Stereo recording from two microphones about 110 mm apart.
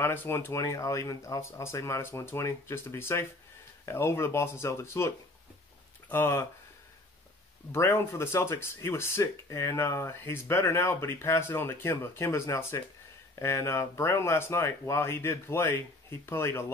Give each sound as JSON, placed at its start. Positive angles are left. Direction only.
{"t": 0.0, "sound": "speech", "side_deg": 20}
{"t": 7.7, "sound": "speech", "side_deg": 25}